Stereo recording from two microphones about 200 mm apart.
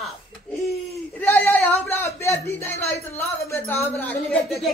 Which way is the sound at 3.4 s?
10° left (ahead or behind).